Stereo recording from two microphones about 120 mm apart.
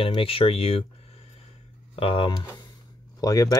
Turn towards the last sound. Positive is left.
turn(degrees=30)  # may be behind; listen again after turning